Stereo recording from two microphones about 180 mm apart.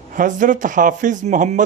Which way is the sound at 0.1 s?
45° right (ahead or behind).